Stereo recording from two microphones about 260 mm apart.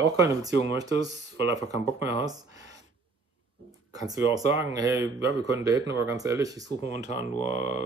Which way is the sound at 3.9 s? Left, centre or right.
Centre.